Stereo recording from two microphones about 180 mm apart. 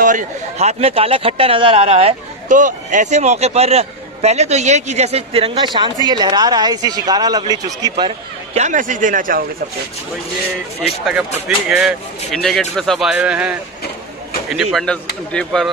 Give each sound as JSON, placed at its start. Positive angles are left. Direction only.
{"t": 0.0, "sound": "a man's voice", "side_deg": -45}
{"t": 8.5, "sound": "speech", "side_deg": -45}
{"t": 11.1, "sound": "speech", "side_deg": -5}